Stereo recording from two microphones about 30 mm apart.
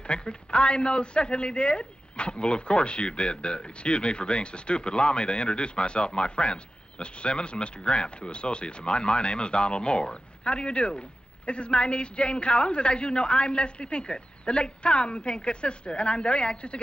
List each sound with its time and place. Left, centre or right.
0.0 s a man's voice: left